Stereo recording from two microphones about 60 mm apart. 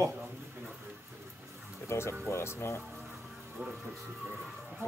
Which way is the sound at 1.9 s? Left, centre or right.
Left.